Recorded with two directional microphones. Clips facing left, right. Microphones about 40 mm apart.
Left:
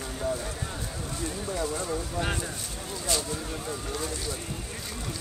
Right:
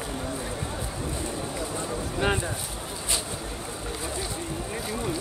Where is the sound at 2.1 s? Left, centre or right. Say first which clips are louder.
Right 8 dB; right.